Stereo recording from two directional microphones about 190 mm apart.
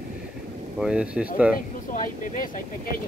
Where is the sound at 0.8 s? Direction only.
5° right (ahead or behind).